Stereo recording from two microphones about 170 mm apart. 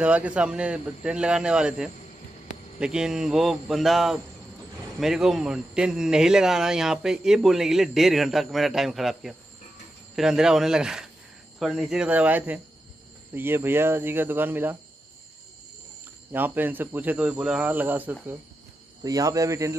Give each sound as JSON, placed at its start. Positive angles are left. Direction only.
{"t": 0.0, "sound": "speech", "side_deg": -5}
{"t": 16.3, "sound": "speech", "side_deg": -10}
{"t": 19.0, "sound": "speech", "side_deg": -20}